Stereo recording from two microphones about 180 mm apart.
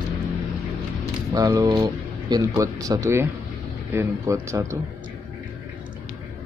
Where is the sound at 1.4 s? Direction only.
20° right (ahead or behind).